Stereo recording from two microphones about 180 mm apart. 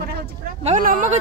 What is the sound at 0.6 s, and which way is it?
Speech, 45° right (ahead or behind).